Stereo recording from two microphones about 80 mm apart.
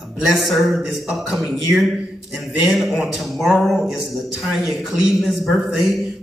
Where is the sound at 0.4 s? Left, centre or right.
Centre.